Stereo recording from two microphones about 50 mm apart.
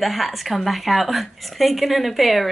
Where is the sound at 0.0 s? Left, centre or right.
Centre.